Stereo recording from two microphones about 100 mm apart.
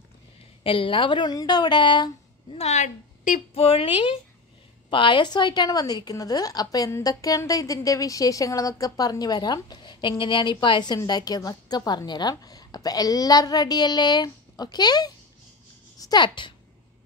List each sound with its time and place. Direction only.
0.7 s a woman's voice: 65° left (ahead or behind)
3.5 s a woman's voice: 70° left (ahead or behind); by 16.5 s 50° left (ahead or behind)